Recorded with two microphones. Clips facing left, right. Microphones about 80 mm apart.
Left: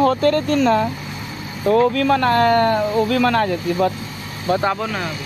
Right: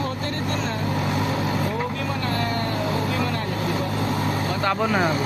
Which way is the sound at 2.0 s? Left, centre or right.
Left.